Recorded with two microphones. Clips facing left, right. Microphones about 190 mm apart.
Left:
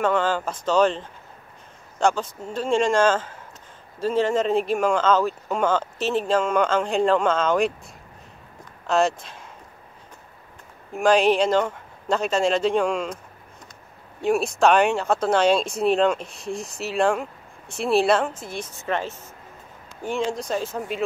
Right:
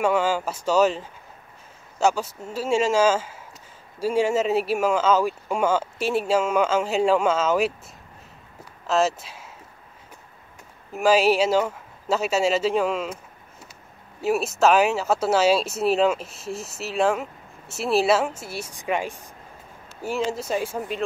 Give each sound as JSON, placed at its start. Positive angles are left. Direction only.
{"t": 0.0, "sound": "speech", "side_deg": -10}
{"t": 8.8, "sound": "speech", "side_deg": 0}
{"t": 10.9, "sound": "speech", "side_deg": -5}
{"t": 14.2, "sound": "speech", "side_deg": -5}